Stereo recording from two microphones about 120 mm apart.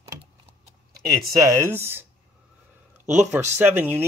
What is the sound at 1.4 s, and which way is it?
Speech, 25° right (ahead or behind).